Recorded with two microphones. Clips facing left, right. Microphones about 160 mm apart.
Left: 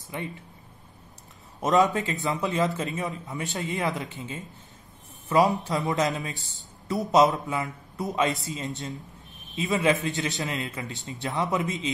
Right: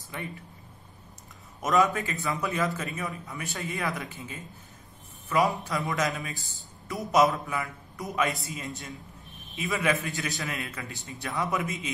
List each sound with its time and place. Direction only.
0.1 s speech: 20° left (ahead or behind)
1.6 s a man's voice: 20° left (ahead or behind)